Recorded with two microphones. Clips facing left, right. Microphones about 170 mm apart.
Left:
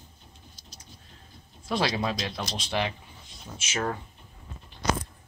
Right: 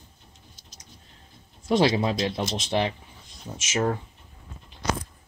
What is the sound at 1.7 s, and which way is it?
Speech, 25° right (ahead or behind).